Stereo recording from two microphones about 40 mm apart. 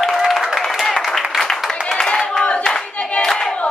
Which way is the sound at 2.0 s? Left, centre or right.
Centre.